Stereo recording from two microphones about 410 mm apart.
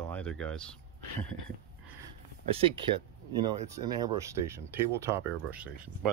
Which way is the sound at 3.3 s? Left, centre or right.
Centre.